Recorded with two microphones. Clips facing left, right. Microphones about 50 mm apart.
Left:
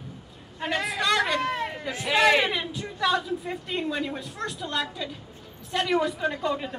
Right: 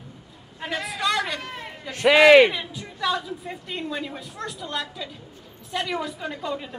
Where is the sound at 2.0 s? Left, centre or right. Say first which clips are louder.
Right 8 dB; right.